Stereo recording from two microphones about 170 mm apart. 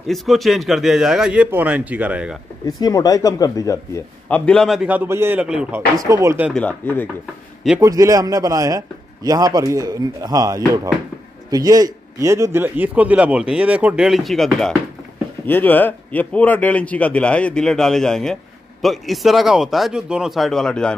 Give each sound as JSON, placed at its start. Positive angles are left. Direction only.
{"t": 0.0, "sound": "a man's voice", "side_deg": 0}
{"t": 2.6, "sound": "speech", "side_deg": 20}
{"t": 4.5, "sound": "a man's voice", "side_deg": 0}
{"t": 5.9, "sound": "a man's voice", "side_deg": -20}
{"t": 6.5, "sound": "speech", "side_deg": 10}
{"t": 7.8, "sound": "a man's voice", "side_deg": -20}